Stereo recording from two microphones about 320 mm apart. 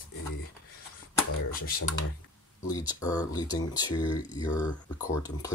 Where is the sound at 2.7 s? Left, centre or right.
Centre.